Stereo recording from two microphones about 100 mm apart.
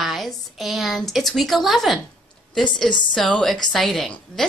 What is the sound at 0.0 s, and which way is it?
A woman's voice, centre (ahead or behind).